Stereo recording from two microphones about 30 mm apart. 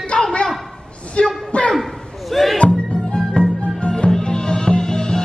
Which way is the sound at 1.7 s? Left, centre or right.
Centre.